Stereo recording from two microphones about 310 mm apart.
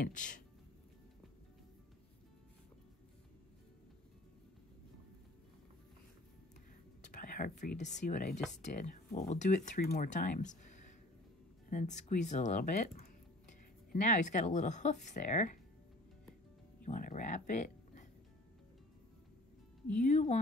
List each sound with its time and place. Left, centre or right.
0.0 s speech: left
7.1 s speech: left
11.7 s speech: left
16.8 s speech: left
20.0 s speech: left